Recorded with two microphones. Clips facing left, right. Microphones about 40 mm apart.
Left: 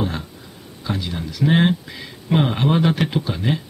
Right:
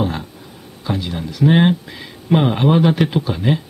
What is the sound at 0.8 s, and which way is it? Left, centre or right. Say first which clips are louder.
Speech: right 3 dB; centre.